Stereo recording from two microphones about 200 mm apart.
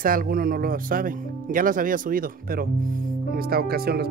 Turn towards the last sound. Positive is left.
turn(degrees=-50)  # may be behind; listen again after turning